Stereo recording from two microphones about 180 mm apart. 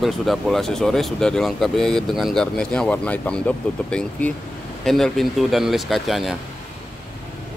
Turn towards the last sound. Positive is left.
turn(degrees=0)  # may be behind; listen again after turning